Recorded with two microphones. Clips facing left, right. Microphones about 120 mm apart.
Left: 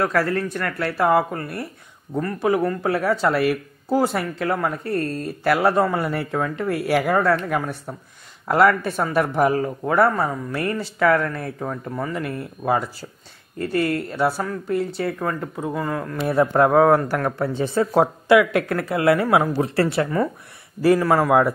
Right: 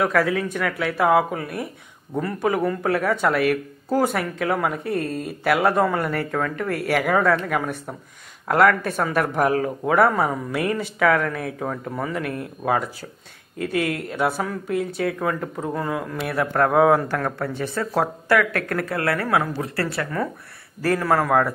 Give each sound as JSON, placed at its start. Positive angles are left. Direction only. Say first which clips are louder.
{"t": 0.2, "sound": "speech", "louder": "right 1 dB", "side_deg": -5}
{"t": 16.3, "sound": "speech", "louder": "left 5 dB", "side_deg": 25}
{"t": 16.7, "sound": "speech", "louder": "even", "side_deg": 0}
{"t": 17.1, "sound": "speech", "louder": "left 2 dB", "side_deg": 10}
{"t": 17.6, "sound": "speech", "louder": "left 6 dB", "side_deg": 20}
{"t": 20.8, "sound": "speech", "louder": "left 4 dB", "side_deg": 5}